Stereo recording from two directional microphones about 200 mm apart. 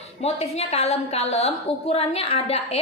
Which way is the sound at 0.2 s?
30° left (ahead or behind).